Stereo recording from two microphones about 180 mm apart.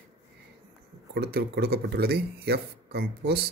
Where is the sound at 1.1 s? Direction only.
65° right (ahead or behind).